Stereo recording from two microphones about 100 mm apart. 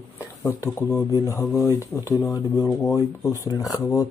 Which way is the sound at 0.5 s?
30° left (ahead or behind).